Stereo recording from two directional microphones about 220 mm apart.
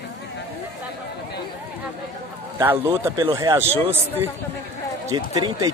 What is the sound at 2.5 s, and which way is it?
Speech, 10° right (ahead or behind).